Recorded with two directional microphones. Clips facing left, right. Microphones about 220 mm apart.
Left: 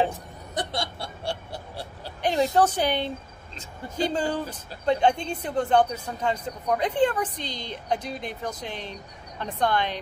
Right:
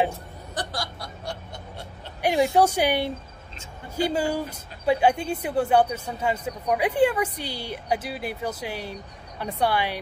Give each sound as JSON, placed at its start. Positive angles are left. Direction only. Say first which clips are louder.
{"t": 0.6, "sound": "snicker", "louder": "left 2 dB", "side_deg": 25}
{"t": 2.2, "sound": "speech", "louder": "right 2 dB", "side_deg": -10}